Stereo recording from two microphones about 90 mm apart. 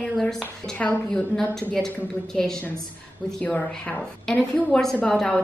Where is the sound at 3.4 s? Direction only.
15° left (ahead or behind).